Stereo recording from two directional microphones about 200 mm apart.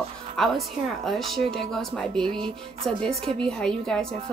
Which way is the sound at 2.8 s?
30° right (ahead or behind).